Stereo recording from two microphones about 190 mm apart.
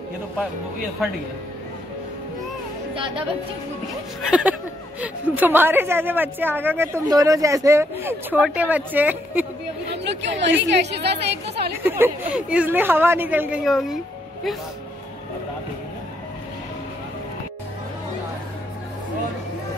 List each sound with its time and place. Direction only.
2.9 s speech: 25° right (ahead or behind)
4.2 s a woman's voice: 5° right (ahead or behind)
10.0 s a woman's voice: 65° right (ahead or behind)
11.8 s a woman's voice: 10° right (ahead or behind)